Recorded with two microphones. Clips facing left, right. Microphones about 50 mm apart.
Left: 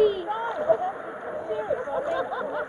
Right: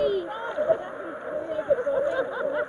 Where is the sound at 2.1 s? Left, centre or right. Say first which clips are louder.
Right 1 dB; centre.